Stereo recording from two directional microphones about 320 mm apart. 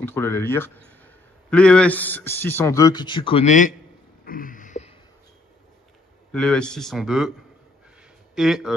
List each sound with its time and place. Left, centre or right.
0.0 s a man's voice: centre; by 3.7 s left
4.2 s a sound: left
6.3 s speech: centre
8.4 s speech: centre